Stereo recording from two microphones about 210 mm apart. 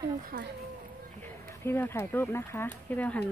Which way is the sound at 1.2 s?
10° left (ahead or behind).